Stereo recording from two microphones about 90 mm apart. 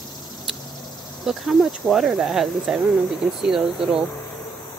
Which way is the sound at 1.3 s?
Centre (ahead or behind).